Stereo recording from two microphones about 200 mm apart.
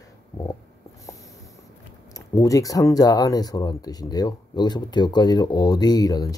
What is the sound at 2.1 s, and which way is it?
Speech, 15° left (ahead or behind).